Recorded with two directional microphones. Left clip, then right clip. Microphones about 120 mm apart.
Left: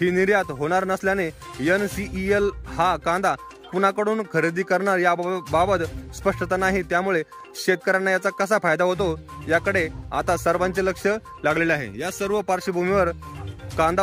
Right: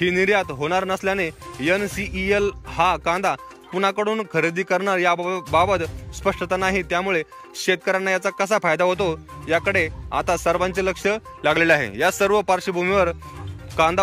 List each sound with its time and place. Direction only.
0.0 s speech: 40° left (ahead or behind)
11.4 s speech: 25° left (ahead or behind)
12.4 s speech: 35° left (ahead or behind)